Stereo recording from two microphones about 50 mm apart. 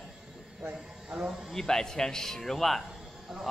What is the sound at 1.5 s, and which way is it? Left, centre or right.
Speech, centre.